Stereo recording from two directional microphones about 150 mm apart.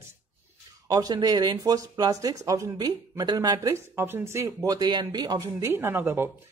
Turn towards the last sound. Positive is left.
turn(degrees=-15)  # may be behind; listen again after turning